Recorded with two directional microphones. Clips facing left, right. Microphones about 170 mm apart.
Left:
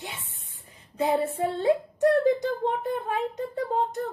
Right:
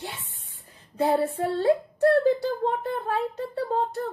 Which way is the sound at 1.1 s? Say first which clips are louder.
Right 1 dB; 15° left (ahead or behind).